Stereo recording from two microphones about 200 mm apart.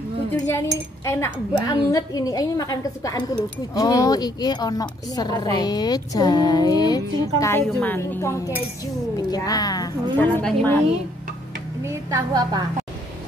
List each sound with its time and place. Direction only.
0.3 s a woman's voice: 15° left (ahead or behind)
11.8 s a woman's voice: 15° right (ahead or behind)